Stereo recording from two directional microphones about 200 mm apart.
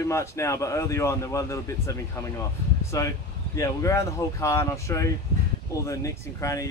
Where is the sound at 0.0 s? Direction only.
15° left (ahead or behind).